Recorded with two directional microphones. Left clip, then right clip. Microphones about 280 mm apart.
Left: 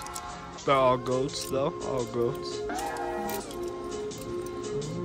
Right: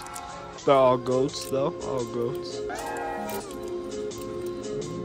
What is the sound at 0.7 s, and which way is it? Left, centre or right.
Speech, centre.